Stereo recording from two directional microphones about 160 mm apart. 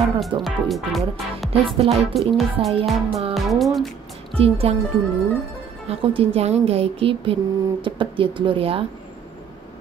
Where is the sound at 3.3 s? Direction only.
Centre (ahead or behind).